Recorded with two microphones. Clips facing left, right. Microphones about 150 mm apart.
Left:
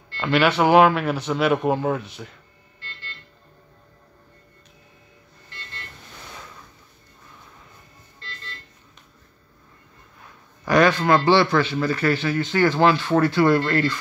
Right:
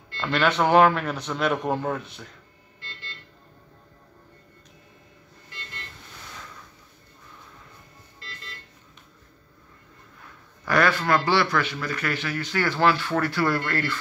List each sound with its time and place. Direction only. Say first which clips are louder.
0.2 s speech: left 4 dB; 5° left (ahead or behind)
10.6 s speech: left 5 dB; 20° left (ahead or behind)